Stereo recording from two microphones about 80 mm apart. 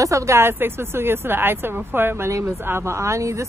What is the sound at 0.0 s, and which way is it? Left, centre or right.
Speech, right.